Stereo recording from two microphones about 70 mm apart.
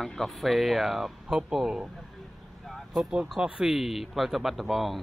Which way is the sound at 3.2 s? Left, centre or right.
Centre.